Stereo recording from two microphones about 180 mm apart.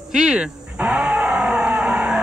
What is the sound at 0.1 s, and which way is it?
Music, 5° right (ahead or behind).